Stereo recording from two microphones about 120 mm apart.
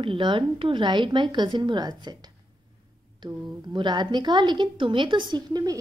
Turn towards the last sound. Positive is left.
turn(degrees=-35)  # may be behind; listen again after turning